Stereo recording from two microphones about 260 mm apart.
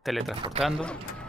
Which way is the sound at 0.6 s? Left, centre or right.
Centre.